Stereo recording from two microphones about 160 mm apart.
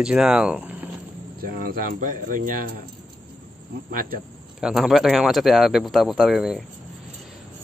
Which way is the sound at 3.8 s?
65° right (ahead or behind).